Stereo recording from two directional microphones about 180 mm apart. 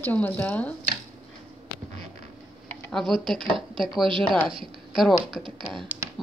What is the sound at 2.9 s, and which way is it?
Speech, centre (ahead or behind).